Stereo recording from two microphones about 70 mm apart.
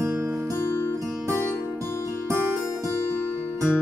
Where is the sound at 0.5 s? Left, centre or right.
Left.